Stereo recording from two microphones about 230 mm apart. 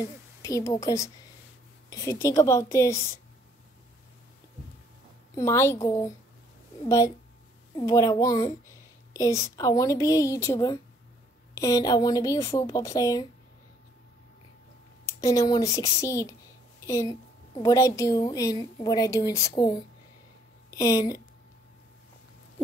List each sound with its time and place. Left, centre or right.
0.0 s a woman's voice: centre
5.3 s a woman's voice: centre
15.0 s a woman's voice: centre